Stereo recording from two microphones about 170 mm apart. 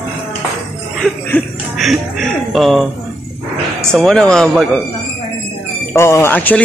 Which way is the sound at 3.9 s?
Centre (ahead or behind).